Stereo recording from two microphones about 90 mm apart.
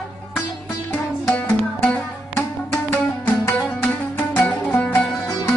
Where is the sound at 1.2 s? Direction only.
20° left (ahead or behind).